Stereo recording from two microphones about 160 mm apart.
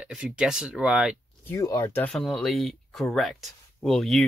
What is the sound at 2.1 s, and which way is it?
Speech, 5° left (ahead or behind).